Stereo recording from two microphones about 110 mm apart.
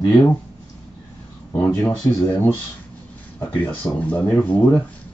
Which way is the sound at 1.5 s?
20° left (ahead or behind).